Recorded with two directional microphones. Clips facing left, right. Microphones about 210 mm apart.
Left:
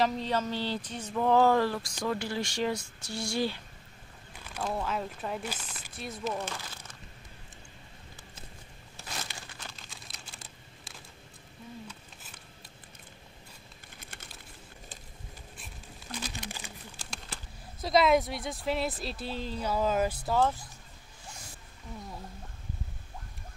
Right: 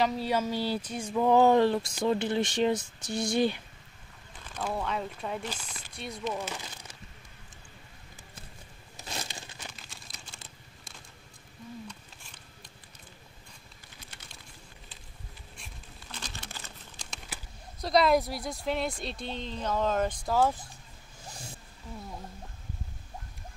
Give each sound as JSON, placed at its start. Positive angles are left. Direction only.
{"t": 0.0, "sound": "speech", "side_deg": -5}
{"t": 4.6, "sound": "speech", "side_deg": 0}
{"t": 6.3, "sound": "speech", "side_deg": -10}
{"t": 8.9, "sound": "crumpling", "side_deg": -15}
{"t": 9.8, "sound": "computer keyboard", "side_deg": 0}
{"t": 11.9, "sound": "a sound", "side_deg": 5}
{"t": 15.5, "sound": "a sound", "side_deg": 5}
{"t": 16.9, "sound": "speech", "side_deg": 0}